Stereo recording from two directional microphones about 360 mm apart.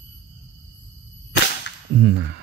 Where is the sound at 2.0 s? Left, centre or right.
Right.